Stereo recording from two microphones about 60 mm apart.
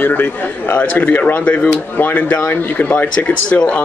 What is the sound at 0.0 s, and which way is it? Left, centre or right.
A man's voice, left.